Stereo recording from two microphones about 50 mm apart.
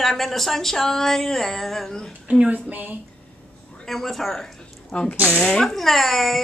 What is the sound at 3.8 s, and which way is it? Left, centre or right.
Speech, centre.